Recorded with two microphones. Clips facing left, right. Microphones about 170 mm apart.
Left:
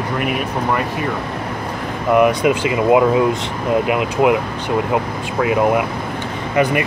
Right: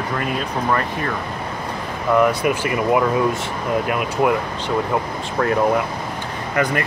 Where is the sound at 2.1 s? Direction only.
20° left (ahead or behind).